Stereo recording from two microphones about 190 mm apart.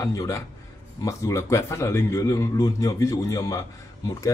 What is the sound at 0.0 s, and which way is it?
A man's voice, 20° left (ahead or behind).